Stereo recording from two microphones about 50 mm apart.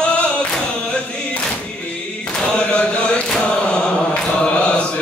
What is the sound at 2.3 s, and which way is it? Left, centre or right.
Chant, centre.